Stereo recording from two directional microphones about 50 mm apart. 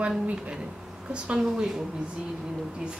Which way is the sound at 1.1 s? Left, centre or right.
Right.